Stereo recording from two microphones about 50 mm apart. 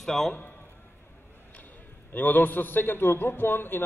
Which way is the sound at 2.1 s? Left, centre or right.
Left.